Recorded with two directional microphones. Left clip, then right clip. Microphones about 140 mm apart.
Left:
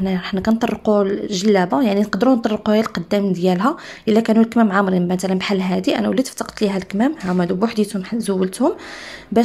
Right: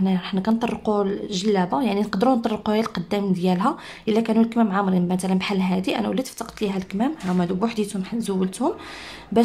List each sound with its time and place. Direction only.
0.0 s speech: 30° left (ahead or behind)